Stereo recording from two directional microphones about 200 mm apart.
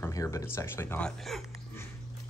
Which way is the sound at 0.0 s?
15° left (ahead or behind).